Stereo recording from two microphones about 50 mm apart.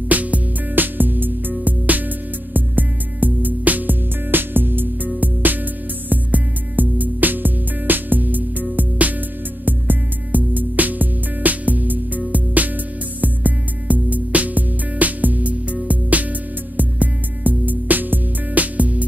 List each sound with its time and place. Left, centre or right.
0.1 s music: right